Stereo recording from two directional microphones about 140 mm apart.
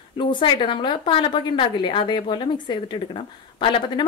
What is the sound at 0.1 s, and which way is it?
A woman's voice, 35° left (ahead or behind).